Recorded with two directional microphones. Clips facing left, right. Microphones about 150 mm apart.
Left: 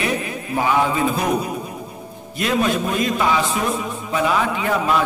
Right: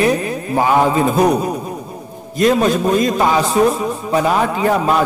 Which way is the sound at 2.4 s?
40° right (ahead or behind).